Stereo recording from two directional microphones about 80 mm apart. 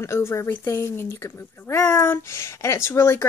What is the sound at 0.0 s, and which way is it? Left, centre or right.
Speech, left.